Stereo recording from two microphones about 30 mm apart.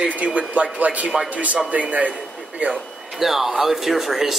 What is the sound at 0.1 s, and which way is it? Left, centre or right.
A man's voice, right.